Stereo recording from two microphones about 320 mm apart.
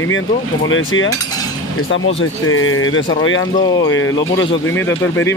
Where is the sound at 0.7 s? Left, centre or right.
Left.